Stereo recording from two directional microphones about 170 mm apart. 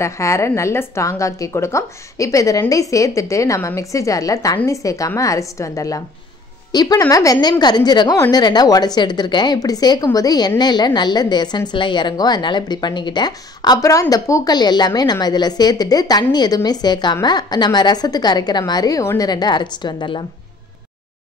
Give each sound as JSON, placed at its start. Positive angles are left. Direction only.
{"t": 0.0, "sound": "a woman's voice", "side_deg": 15}